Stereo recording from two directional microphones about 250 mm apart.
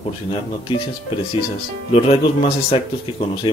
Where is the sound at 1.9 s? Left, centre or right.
Left.